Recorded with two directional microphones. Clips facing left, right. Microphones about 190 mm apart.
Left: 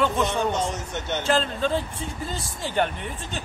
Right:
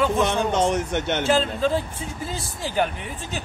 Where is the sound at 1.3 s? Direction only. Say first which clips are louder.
Right 1 dB; centre (ahead or behind).